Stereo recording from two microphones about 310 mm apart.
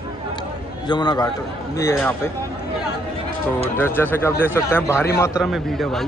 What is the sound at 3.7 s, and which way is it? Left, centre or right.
A man's voice, centre.